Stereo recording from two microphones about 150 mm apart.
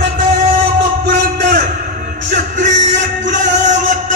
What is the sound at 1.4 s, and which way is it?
Music, 60° right (ahead or behind).